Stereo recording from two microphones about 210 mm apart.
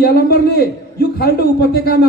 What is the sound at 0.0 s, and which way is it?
A man's voice, 45° left (ahead or behind).